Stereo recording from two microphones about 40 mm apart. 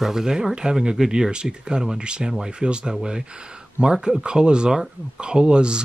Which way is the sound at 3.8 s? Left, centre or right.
Right.